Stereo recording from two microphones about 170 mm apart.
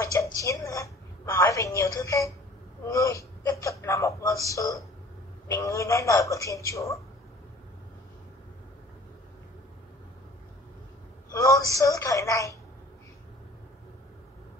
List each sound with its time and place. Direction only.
0.0 s a sound: 20° left (ahead or behind)
2.8 s whimper: 20° left (ahead or behind)
5.5 s a woman's voice: 20° left (ahead or behind)
11.3 s speech: 20° left (ahead or behind)